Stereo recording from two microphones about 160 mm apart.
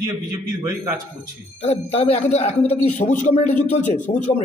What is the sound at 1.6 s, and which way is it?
Speech, 40° left (ahead or behind).